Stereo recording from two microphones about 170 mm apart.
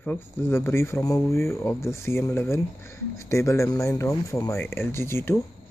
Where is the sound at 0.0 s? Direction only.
15° left (ahead or behind).